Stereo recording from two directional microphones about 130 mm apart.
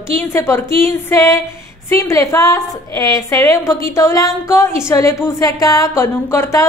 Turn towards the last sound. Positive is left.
turn(degrees=20)  # may be behind; listen again after turning